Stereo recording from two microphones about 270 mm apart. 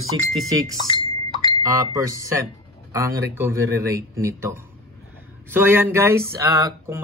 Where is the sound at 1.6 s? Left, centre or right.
Centre.